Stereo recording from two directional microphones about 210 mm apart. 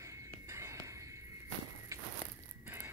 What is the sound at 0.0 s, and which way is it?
Whispering, 15° right (ahead or behind).